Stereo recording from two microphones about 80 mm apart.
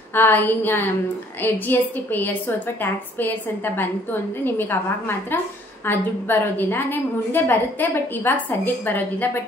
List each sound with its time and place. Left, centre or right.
0.1 s a woman's voice: left